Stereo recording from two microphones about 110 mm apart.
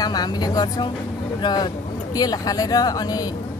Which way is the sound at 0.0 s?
40° left (ahead or behind).